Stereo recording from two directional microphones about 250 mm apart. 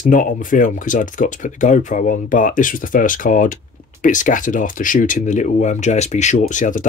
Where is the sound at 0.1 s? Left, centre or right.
Left.